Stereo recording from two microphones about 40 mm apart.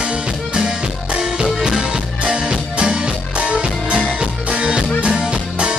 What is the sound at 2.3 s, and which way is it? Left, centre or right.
Music, right.